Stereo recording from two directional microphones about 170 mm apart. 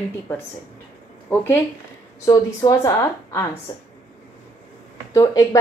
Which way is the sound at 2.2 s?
20° left (ahead or behind).